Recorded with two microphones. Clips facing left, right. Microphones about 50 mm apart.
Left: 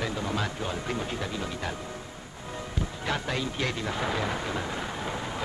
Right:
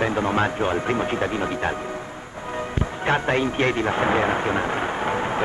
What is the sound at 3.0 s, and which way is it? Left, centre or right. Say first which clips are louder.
Speech: right 10 dB; right.